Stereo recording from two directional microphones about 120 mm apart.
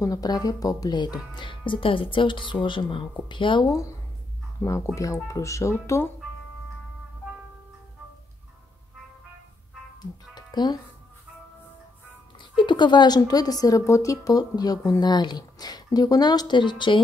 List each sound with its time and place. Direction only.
0.0 s speech: 30° left (ahead or behind)
4.6 s speech: 25° left (ahead or behind)
10.3 s music: 35° left (ahead or behind)
12.4 s a woman's voice: 40° left (ahead or behind)